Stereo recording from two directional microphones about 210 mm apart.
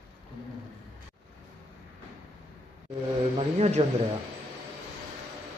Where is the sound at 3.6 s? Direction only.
30° right (ahead or behind).